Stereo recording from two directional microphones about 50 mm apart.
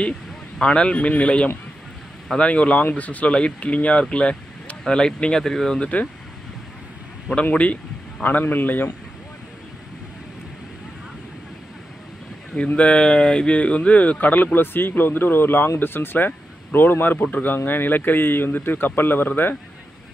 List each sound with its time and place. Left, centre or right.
0.6 s speech: left
5.8 s speech: left
7.5 s speech: left
12.5 s speech: left